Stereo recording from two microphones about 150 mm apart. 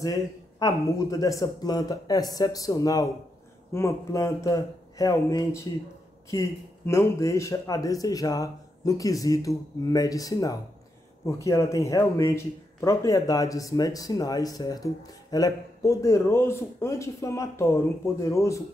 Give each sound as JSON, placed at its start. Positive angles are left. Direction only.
{"t": 0.0, "sound": "speech", "side_deg": 25}
{"t": 6.9, "sound": "speech", "side_deg": 20}